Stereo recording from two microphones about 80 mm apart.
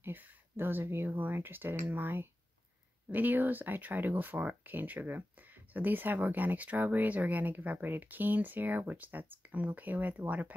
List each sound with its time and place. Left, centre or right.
0.0 s speech: right